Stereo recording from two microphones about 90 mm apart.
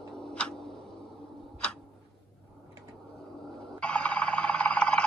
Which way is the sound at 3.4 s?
5° left (ahead or behind).